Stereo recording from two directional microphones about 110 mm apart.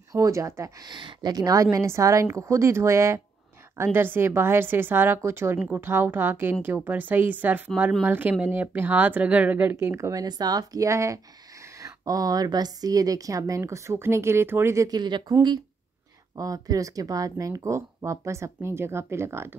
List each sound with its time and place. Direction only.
0.1 s speech: 30° right (ahead or behind)
10.2 s a woman's voice: 40° right (ahead or behind)
16.3 s speech: 30° right (ahead or behind)